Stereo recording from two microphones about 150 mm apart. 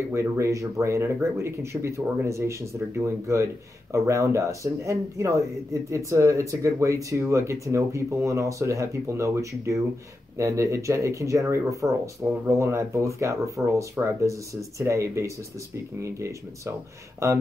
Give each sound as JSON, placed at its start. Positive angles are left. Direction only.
{"t": 0.1, "sound": "speech", "side_deg": -20}